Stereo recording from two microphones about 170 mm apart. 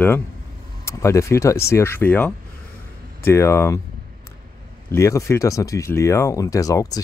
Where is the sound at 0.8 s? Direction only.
15° left (ahead or behind).